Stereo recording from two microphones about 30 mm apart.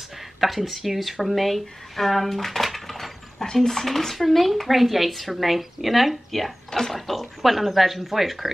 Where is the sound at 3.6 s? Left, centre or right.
Centre.